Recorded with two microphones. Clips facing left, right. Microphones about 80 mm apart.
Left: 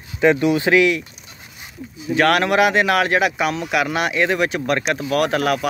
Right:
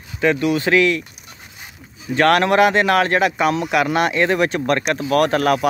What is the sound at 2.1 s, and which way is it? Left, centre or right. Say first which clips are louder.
Speech: right 2 dB; centre.